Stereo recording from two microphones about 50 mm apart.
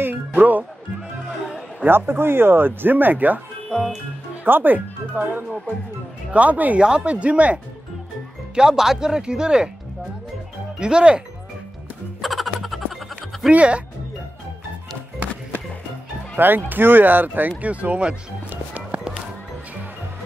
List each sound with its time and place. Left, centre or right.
0.0 s speech: right
1.9 s speech: right
3.7 s music: centre
4.5 s speech: right
6.8 s speech: centre
8.5 s speech: centre
10.8 s speech: centre
12.2 s music: centre
13.5 s speech: right
16.3 s speech: right
18.5 s music: right